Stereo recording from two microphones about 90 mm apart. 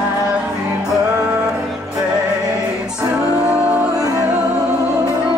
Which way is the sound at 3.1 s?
10° right (ahead or behind).